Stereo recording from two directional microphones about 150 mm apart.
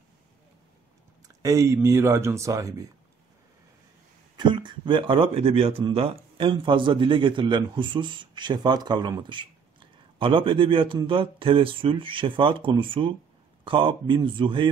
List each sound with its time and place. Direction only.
1.2 s speech: 25° right (ahead or behind)
4.4 s speech: 30° right (ahead or behind)